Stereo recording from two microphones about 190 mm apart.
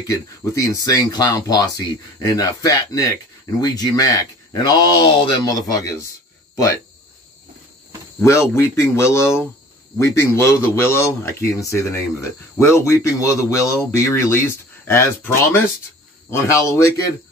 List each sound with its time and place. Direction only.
0.0 s speech: 15° left (ahead or behind)
8.2 s speech: 15° left (ahead or behind)